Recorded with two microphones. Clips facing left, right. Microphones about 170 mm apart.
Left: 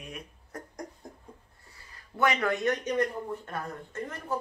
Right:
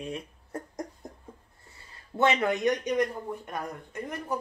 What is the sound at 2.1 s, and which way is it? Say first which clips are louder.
Speech: right 2 dB; 25° right (ahead or behind).